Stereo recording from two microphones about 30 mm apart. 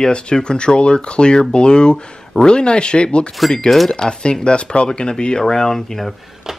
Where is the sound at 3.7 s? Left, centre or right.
Centre.